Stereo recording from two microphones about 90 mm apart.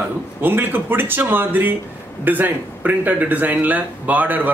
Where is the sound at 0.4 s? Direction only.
20° right (ahead or behind).